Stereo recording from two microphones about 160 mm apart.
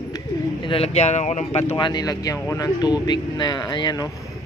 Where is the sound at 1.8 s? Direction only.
25° left (ahead or behind).